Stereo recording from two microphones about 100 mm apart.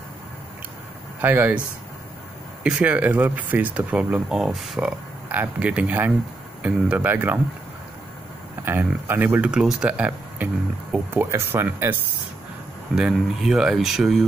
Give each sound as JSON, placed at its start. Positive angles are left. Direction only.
{"t": 1.2, "sound": "speech", "side_deg": -20}
{"t": 2.6, "sound": "speech", "side_deg": -10}
{"t": 5.3, "sound": "speech", "side_deg": -15}
{"t": 8.6, "sound": "speech", "side_deg": -20}
{"t": 12.9, "sound": "speech", "side_deg": -5}